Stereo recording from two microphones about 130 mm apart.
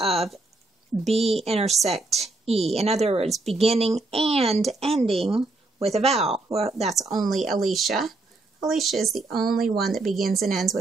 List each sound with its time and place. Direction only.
0.0 s speech: 50° right (ahead or behind)
2.0 s a woman's voice: centre (ahead or behind)
2.4 s speech: 50° right (ahead or behind)
7.1 s speech: centre (ahead or behind)